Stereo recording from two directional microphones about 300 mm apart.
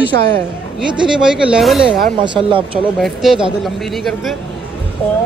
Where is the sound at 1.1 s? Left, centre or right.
Centre.